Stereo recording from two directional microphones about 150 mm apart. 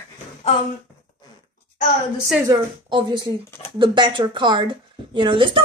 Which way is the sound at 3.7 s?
30° right (ahead or behind).